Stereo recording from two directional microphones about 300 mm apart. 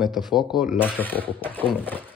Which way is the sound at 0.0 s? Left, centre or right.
Centre.